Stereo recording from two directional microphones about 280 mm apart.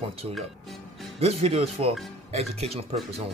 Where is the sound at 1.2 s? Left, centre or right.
Right.